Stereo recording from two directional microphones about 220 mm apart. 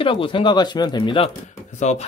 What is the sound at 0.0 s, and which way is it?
Speech, 25° left (ahead or behind).